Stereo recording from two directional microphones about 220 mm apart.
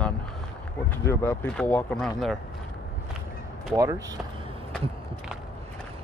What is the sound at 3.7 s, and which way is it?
Speech, 15° right (ahead or behind).